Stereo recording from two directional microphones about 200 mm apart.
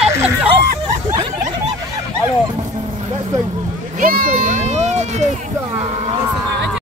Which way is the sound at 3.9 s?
45° right (ahead or behind).